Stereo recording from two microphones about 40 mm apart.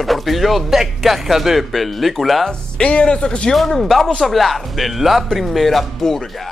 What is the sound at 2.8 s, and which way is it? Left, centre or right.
Speech, left.